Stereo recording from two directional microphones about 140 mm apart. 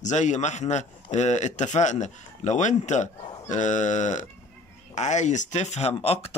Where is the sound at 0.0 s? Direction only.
60° left (ahead or behind).